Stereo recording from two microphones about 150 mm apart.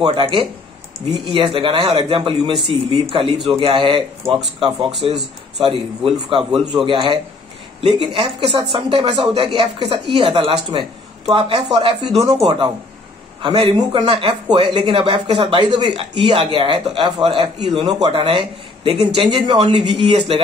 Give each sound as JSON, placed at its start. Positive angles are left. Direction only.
{"t": 0.0, "sound": "a man's voice", "side_deg": -35}
{"t": 17.8, "sound": "speech", "side_deg": -25}
{"t": 18.1, "sound": "speech", "side_deg": -40}
{"t": 20.1, "sound": "a man's voice", "side_deg": -45}